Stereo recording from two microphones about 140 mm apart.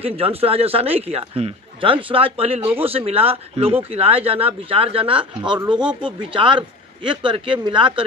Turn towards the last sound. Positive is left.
turn(degrees=-40)  # may be behind; listen again after turning